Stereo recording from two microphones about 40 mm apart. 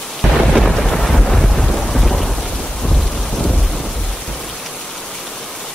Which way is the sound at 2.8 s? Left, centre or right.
Left.